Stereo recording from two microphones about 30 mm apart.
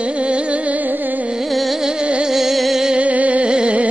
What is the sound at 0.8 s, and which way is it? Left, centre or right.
Carnatic music, right.